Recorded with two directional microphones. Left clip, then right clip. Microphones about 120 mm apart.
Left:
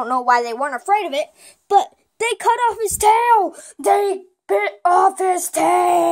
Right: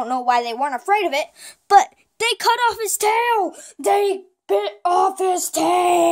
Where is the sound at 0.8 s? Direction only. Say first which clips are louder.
Left 1 dB; 65° right (ahead or behind).